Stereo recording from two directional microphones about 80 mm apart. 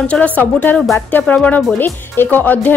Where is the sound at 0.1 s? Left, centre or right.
Centre.